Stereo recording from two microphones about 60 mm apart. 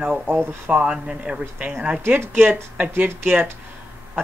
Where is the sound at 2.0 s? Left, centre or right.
Right.